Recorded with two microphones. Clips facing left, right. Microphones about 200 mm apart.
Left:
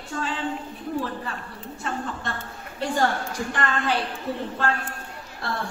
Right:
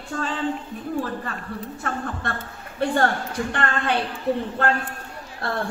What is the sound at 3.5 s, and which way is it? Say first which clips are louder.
Speech: even; 60° right (ahead or behind).